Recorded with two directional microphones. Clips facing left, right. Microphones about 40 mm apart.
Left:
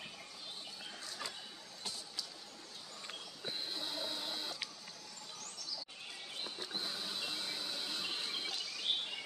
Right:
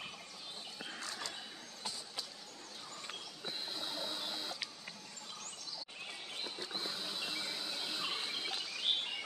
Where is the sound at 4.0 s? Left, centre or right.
Centre.